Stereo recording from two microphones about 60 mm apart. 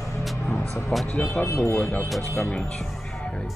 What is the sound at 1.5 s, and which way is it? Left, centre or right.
Speech, left.